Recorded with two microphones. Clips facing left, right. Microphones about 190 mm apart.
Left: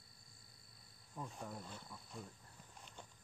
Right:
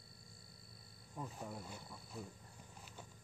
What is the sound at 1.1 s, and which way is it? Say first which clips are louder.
Speech: right 1 dB; 5° right (ahead or behind).